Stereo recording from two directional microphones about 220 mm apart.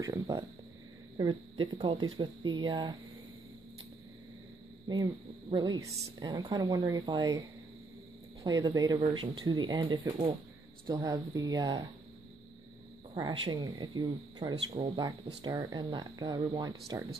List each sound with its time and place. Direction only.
0.0 s speech: 15° right (ahead or behind)
4.8 s a woman's voice: 15° right (ahead or behind)
8.5 s a woman's voice: 15° right (ahead or behind)
13.1 s speech: 15° right (ahead or behind)